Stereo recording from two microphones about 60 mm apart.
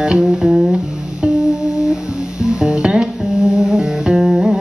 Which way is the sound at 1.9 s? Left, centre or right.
Centre.